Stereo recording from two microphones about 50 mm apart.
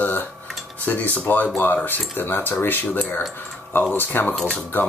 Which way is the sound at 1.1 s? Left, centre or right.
Left.